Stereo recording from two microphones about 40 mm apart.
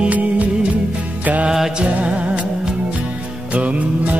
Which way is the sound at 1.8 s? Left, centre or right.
Right.